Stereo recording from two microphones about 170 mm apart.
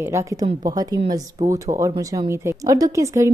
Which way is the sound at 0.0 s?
15° right (ahead or behind).